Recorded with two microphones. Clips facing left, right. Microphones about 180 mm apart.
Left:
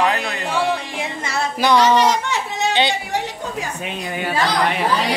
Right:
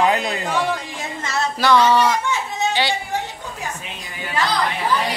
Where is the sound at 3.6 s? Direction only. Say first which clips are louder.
Left 5 dB; 70° left (ahead or behind).